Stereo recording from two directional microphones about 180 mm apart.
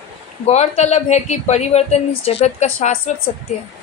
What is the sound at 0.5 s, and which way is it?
A woman's voice, 40° left (ahead or behind).